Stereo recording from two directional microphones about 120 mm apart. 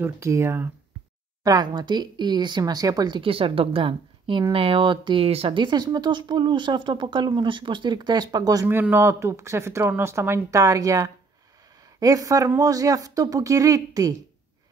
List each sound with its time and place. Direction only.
0.0 s speech: 20° right (ahead or behind)
1.4 s speech: 30° right (ahead or behind)
3.2 s speech: 50° right (ahead or behind)
5.6 s speech: 35° right (ahead or behind)
8.6 s speech: 15° right (ahead or behind)